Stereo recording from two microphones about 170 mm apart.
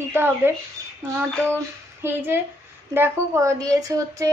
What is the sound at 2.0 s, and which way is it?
Speech, 15° right (ahead or behind).